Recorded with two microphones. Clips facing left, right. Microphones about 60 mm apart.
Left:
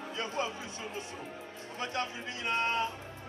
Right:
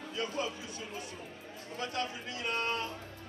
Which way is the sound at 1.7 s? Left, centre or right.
Left.